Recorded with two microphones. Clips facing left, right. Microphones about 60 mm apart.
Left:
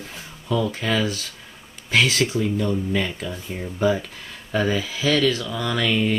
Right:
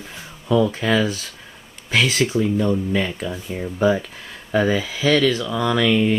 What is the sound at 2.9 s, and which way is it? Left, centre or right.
Speech, centre.